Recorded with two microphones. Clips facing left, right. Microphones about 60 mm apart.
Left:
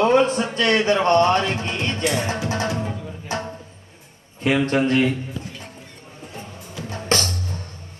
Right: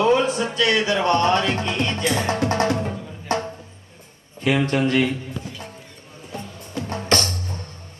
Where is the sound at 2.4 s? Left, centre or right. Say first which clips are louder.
Right 4 dB; right.